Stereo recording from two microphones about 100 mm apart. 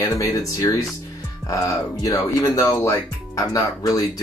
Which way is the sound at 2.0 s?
35° left (ahead or behind).